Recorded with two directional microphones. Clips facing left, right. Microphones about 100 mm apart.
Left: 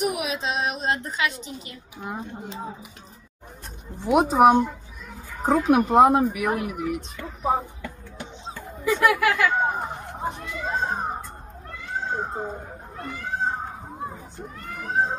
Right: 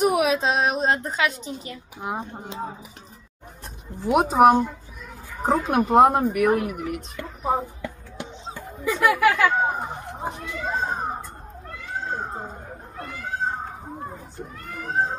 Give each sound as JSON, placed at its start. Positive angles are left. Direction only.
{"t": 0.0, "sound": "a woman's voice", "side_deg": -35}
{"t": 4.0, "sound": "speech", "side_deg": 0}
{"t": 8.5, "sound": "a sound", "side_deg": 0}
{"t": 9.1, "sound": "speech", "side_deg": 0}
{"t": 12.9, "sound": "children playing", "side_deg": 0}
{"t": 14.7, "sound": "speech", "side_deg": 0}